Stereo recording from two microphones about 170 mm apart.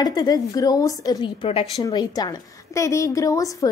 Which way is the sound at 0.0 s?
25° left (ahead or behind).